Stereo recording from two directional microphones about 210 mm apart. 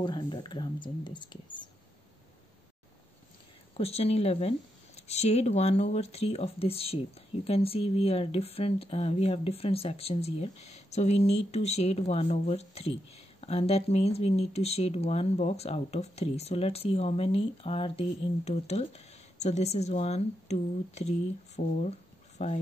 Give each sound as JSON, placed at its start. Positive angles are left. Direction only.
{"t": 0.0, "sound": "speech", "side_deg": 20}
{"t": 3.7, "sound": "speech", "side_deg": 30}